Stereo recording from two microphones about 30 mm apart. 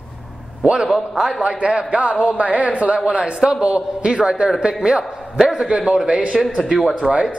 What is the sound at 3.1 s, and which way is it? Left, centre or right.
A man's voice, right.